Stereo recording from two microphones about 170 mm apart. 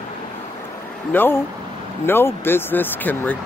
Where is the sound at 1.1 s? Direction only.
10° left (ahead or behind).